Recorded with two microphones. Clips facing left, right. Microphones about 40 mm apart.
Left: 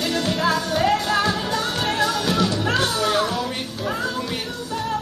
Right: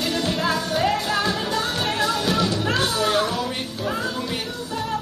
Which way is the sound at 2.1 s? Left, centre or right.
Centre.